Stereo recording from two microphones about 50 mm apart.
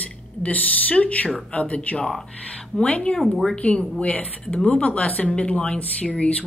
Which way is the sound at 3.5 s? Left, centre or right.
Left.